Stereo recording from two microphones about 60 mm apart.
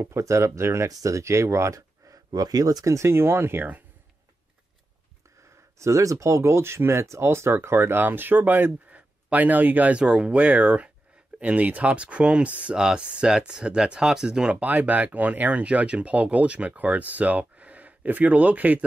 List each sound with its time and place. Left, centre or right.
0.0 s speech: right
0.8 s speech: right
3.1 s speech: right
5.4 s speech: right
10.0 s speech: centre
14.6 s speech: right